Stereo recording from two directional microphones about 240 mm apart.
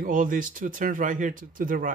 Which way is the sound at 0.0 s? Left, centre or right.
Right.